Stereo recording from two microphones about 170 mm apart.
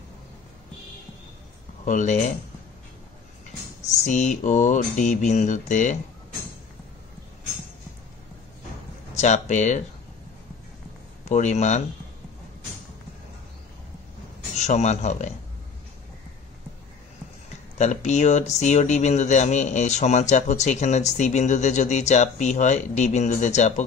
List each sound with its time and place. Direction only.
1.9 s speech: 45° left (ahead or behind)
3.8 s speech: 45° left (ahead or behind)
9.1 s speech: 45° left (ahead or behind)
11.2 s speech: 45° left (ahead or behind)
14.6 s speech: 40° left (ahead or behind)
17.7 s speech: 45° left (ahead or behind)